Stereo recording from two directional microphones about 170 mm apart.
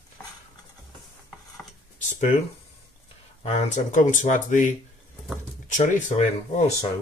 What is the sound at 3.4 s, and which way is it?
Speech, 45° left (ahead or behind).